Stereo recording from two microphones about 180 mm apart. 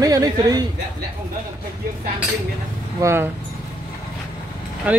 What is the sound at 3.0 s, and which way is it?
Speech, 15° right (ahead or behind).